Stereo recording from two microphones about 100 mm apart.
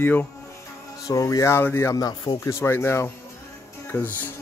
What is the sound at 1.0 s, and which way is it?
Speech, 35° left (ahead or behind).